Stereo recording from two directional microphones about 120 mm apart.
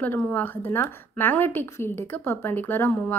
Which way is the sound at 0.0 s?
15° left (ahead or behind).